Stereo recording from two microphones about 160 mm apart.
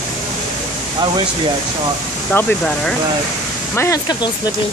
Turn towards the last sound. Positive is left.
turn(degrees=20)  # may be behind; listen again after turning